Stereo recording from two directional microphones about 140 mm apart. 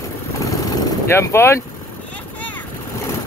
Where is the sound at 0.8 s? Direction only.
20° left (ahead or behind).